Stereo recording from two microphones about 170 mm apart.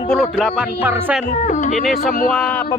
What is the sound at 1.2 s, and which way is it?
A man's voice, 45° left (ahead or behind).